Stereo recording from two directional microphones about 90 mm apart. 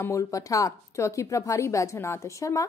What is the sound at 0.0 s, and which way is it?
A woman's voice, 35° left (ahead or behind).